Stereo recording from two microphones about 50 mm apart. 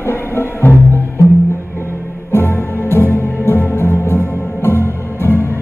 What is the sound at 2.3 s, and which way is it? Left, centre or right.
Music, left.